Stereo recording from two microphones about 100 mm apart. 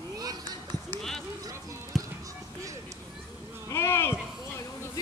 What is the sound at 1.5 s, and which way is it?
Music, 30° right (ahead or behind).